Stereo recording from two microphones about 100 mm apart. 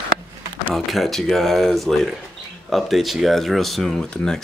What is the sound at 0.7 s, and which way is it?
Speech, centre (ahead or behind).